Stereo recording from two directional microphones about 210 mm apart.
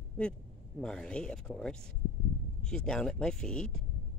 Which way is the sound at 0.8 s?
5° left (ahead or behind).